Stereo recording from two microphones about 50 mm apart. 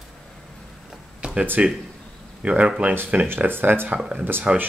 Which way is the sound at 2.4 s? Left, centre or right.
Right.